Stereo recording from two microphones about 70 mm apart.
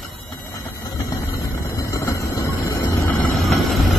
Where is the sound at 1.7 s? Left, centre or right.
Left.